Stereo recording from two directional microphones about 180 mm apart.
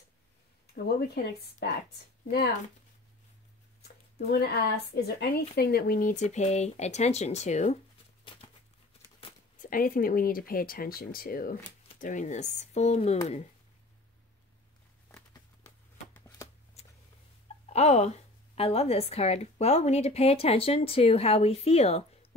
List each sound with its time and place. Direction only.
0.8 s speech: 60° left (ahead or behind)
3.8 s a sound: 60° left (ahead or behind)
4.9 s a woman's voice: 60° left (ahead or behind); by 7.8 s 40° left (ahead or behind)
9.6 s a woman's voice: 50° left (ahead or behind)
16.8 s a sound: 35° left (ahead or behind)
17.7 s a woman's voice: 35° left (ahead or behind)